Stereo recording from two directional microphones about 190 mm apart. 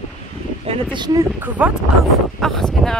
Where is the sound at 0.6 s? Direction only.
30° right (ahead or behind).